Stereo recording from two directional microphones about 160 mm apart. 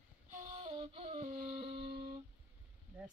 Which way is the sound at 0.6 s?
40° right (ahead or behind).